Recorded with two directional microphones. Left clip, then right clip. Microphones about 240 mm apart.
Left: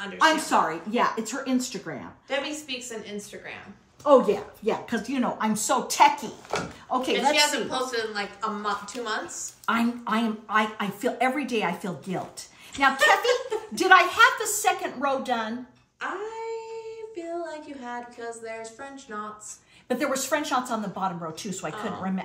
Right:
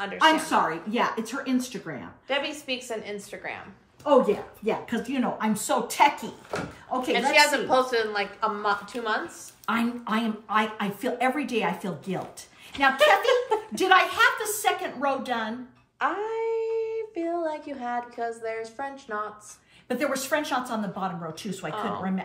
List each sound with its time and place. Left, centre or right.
0.2 s a woman's voice: centre
2.4 s a woman's voice: centre
4.0 s a woman's voice: centre
7.3 s a woman's voice: centre
16.0 s speech: centre
19.9 s a woman's voice: centre